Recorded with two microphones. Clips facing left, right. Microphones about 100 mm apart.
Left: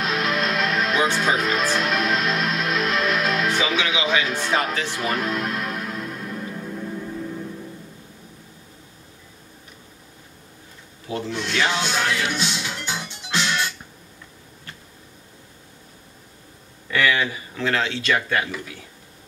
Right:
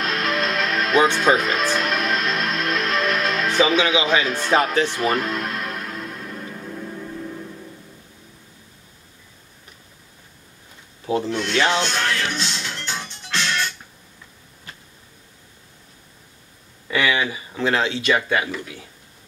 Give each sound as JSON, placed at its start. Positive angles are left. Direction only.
{"t": 0.0, "sound": "music", "side_deg": 0}
{"t": 3.6, "sound": "speech", "side_deg": -35}
{"t": 4.8, "sound": "music", "side_deg": 0}
{"t": 11.2, "sound": "music", "side_deg": 0}
{"t": 16.9, "sound": "speech", "side_deg": -10}